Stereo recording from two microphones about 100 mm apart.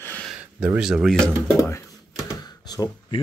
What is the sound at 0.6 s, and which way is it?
Speech, 10° right (ahead or behind).